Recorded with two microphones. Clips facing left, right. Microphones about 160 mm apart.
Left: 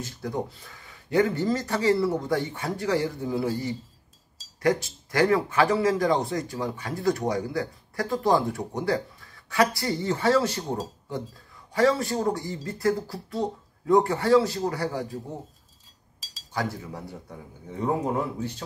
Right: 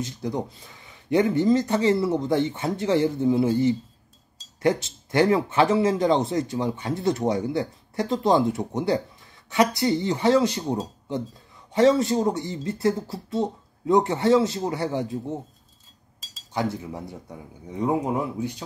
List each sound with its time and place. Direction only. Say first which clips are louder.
0.0 s speech: right 2 dB; 20° right (ahead or behind)
16.5 s a man's voice: right 3 dB; 20° right (ahead or behind)